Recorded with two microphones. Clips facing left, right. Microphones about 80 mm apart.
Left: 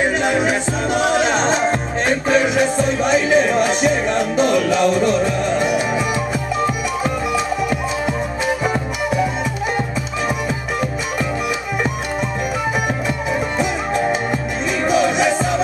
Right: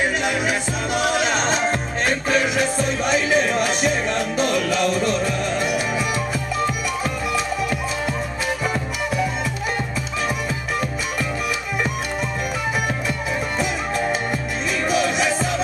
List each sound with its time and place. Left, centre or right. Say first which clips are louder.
0.2 s music: left 5 dB; left
1.4 s music: left 4 dB; centre
13.6 s music: left 4 dB; centre